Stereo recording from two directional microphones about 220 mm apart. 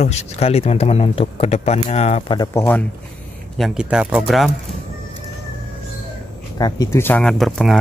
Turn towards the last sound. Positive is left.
turn(degrees=0)  # may be behind; listen again after turning